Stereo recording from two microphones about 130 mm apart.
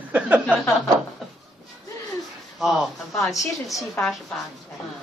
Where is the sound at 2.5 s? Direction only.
Centre (ahead or behind).